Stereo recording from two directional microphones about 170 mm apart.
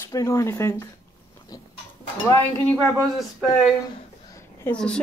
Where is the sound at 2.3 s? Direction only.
20° left (ahead or behind).